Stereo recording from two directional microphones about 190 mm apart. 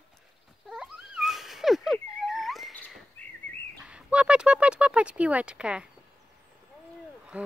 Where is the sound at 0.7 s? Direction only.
5° right (ahead or behind).